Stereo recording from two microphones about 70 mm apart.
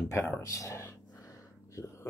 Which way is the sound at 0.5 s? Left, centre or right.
Left.